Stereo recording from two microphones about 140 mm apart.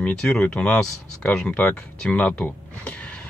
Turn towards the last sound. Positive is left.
turn(degrees=10)  # may be behind; listen again after turning